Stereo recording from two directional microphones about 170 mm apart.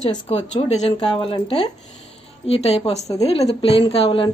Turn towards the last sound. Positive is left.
turn(degrees=30)  # may be behind; listen again after turning